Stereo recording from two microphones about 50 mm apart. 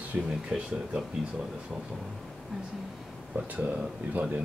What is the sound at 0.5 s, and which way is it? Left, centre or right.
Speech, centre.